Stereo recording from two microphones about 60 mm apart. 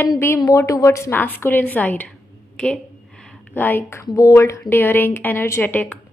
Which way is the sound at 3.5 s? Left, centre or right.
Left.